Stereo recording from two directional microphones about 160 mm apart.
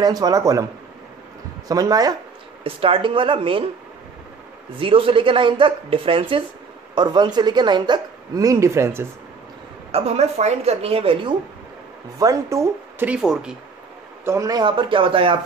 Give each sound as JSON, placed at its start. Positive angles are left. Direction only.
{"t": 0.0, "sound": "speech", "side_deg": -25}
{"t": 1.7, "sound": "speech", "side_deg": -20}
{"t": 2.6, "sound": "speech", "side_deg": -35}
{"t": 4.7, "sound": "speech", "side_deg": -35}
{"t": 9.8, "sound": "speech", "side_deg": -40}
{"t": 12.2, "sound": "speech", "side_deg": -20}
{"t": 13.1, "sound": "speech", "side_deg": -5}
{"t": 14.2, "sound": "speech", "side_deg": -20}